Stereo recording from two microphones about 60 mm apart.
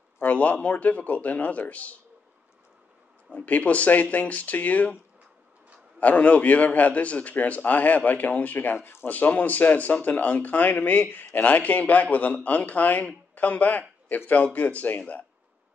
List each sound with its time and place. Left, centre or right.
0.2 s speech: left
3.3 s speech: left
5.9 s speech: left
8.7 s speech: left
9.0 s speech: left